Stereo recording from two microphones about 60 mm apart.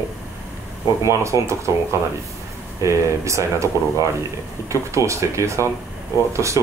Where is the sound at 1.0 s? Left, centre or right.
Right.